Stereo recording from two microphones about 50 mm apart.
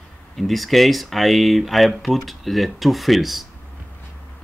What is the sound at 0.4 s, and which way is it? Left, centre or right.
Speech, centre.